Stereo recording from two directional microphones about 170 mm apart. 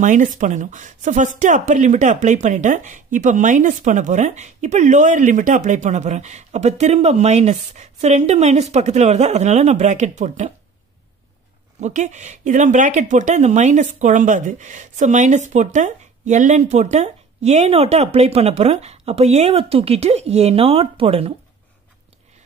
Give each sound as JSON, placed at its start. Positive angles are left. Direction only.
{"t": 0.0, "sound": "speech", "side_deg": -50}
{"t": 11.8, "sound": "speech", "side_deg": -45}